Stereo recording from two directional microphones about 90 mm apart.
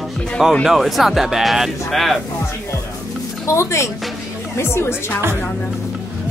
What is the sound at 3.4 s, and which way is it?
Speech, 35° left (ahead or behind).